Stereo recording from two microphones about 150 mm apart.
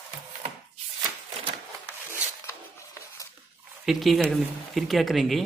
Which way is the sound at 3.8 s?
Centre (ahead or behind).